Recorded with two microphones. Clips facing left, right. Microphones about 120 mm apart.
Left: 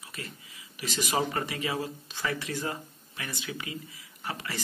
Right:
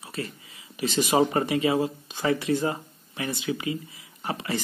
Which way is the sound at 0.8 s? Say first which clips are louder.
Right 8 dB; 20° right (ahead or behind).